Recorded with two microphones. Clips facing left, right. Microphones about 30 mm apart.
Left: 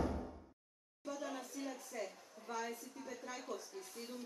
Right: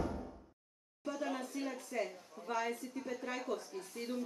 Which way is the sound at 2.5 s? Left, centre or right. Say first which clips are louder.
Right 6 dB; right.